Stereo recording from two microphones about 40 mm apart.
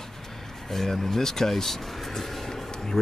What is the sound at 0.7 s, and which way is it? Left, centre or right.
Speech, centre.